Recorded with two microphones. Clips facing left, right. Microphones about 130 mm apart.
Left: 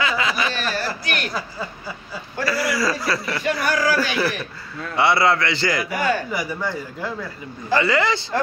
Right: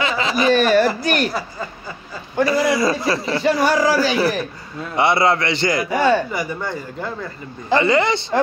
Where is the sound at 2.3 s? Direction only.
20° right (ahead or behind).